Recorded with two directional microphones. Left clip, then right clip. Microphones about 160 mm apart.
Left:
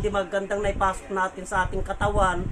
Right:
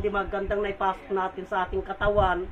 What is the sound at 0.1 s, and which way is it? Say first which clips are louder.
A woman's voice: left 2 dB; 20° left (ahead or behind).